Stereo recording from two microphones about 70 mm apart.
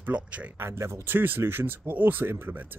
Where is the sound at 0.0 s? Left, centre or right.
Right.